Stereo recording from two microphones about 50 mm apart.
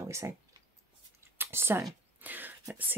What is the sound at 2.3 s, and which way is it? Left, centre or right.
Speech, right.